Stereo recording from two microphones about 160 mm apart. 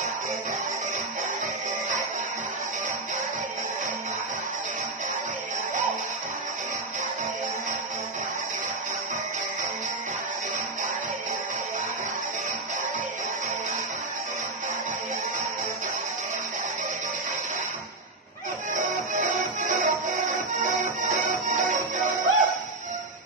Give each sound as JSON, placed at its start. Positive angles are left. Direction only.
{"t": 18.7, "sound": "music", "side_deg": -55}
{"t": 21.3, "sound": "music", "side_deg": -55}